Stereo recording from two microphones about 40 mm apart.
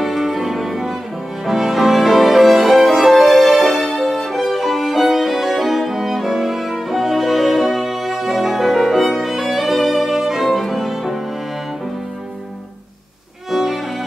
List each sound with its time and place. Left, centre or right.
0.0 s music: centre
13.5 s violin: centre